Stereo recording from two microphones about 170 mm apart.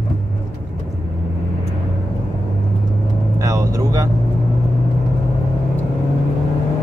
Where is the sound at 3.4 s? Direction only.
20° right (ahead or behind).